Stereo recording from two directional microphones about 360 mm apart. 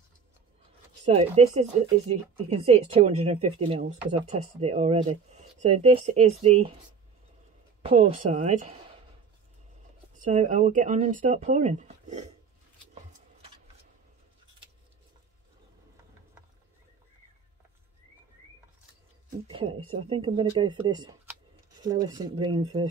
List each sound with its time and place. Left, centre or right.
1.0 s speech: centre
7.8 s speech: centre
10.1 s speech: right
19.4 s speech: centre